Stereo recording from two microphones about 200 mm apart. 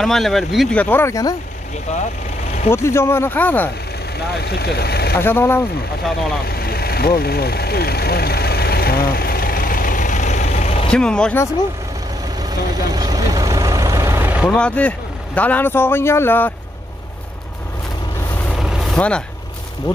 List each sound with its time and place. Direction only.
0.0 s speech: centre (ahead or behind)
1.9 s speech: 35° left (ahead or behind)
2.7 s speech: 15° left (ahead or behind)
4.4 s speech: 55° left (ahead or behind)
5.1 s speech: 10° left (ahead or behind)
6.4 s vehicle: 50° left (ahead or behind); by 10.9 s 35° left (ahead or behind)
10.9 s speech: 5° left (ahead or behind)
12.4 s vehicle: 20° right (ahead or behind)
14.5 s speech: 5° left (ahead or behind)
18.4 s vehicle: centre (ahead or behind)